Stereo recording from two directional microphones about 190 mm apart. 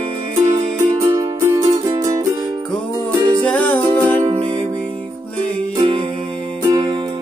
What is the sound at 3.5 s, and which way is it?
Music, 10° left (ahead or behind).